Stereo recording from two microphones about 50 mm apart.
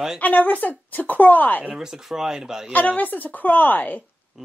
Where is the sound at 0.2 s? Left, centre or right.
Left.